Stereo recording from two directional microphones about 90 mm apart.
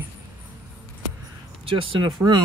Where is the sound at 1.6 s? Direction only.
75° right (ahead or behind).